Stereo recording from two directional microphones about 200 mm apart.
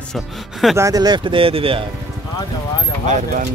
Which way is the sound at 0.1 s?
Centre (ahead or behind).